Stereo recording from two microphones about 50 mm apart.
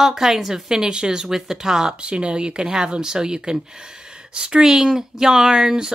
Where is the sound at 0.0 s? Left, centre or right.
Centre.